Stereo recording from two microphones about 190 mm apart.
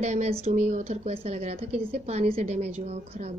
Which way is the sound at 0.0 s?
35° right (ahead or behind).